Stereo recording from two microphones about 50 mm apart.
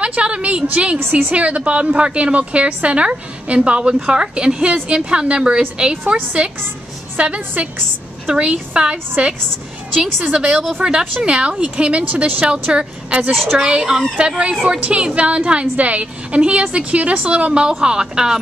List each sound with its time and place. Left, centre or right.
0.0 s a woman's voice: right
12.0 s a woman's voice: right
13.3 s a woman's voice: centre
13.6 s a woman's voice: centre
15.6 s a woman's voice: right; by 18.4 s centre